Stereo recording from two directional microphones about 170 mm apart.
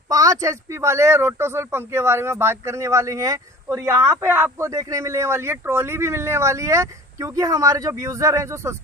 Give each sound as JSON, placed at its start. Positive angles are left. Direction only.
{"t": 0.1, "sound": "speech", "side_deg": -20}